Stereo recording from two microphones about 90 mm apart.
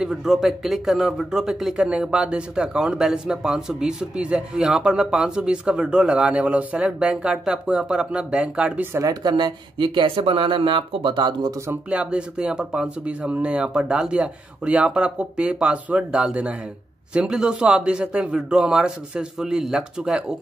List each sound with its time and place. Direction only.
0.0 s speech: 5° right (ahead or behind)
9.0 s speech: 50° right (ahead or behind)
11.9 s speech: 10° right (ahead or behind)